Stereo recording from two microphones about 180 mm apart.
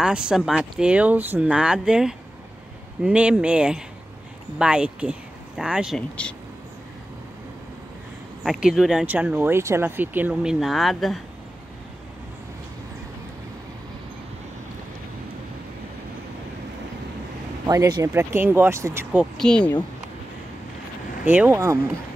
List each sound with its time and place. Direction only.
0.0 s speech: 5° right (ahead or behind)
8.5 s speech: 5° right (ahead or behind)
17.6 s speech: 20° right (ahead or behind)
19.3 s speech: 5° left (ahead or behind)
21.3 s speech: 10° right (ahead or behind)